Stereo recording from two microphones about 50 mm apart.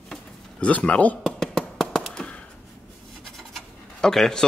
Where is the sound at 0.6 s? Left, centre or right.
Left.